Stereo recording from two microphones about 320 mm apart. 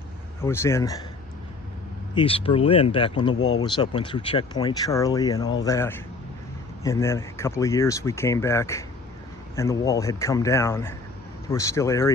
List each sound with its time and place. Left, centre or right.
0.4 s speech: centre
2.1 s speech: centre